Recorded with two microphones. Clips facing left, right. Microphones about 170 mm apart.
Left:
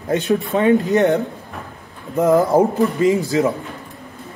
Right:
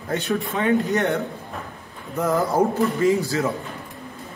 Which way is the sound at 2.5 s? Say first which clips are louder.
Left 4 dB; 20° left (ahead or behind).